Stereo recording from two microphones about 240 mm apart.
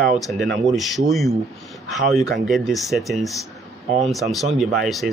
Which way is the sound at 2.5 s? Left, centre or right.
Centre.